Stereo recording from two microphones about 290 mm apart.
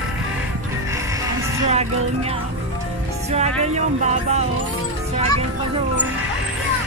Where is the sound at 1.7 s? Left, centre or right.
Right.